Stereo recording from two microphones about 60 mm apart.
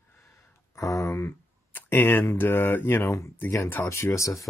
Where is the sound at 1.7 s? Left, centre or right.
Left.